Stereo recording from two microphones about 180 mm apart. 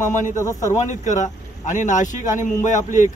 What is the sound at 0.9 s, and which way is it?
A man's voice, 45° left (ahead or behind).